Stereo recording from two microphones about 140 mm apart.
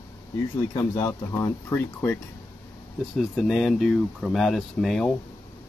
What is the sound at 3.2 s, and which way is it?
Speech, centre (ahead or behind).